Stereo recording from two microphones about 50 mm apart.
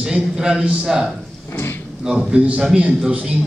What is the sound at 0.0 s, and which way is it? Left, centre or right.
A man's voice, centre.